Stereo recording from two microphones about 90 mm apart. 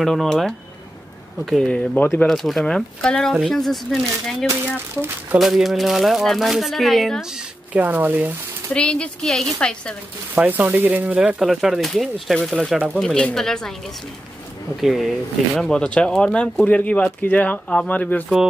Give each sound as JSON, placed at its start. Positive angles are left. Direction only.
{"t": 0.0, "sound": "speech", "side_deg": 5}
{"t": 7.8, "sound": "speech", "side_deg": -20}
{"t": 8.7, "sound": "speech", "side_deg": 10}
{"t": 10.3, "sound": "speech", "side_deg": -20}
{"t": 11.1, "sound": "speech", "side_deg": -10}
{"t": 14.8, "sound": "speech", "side_deg": 0}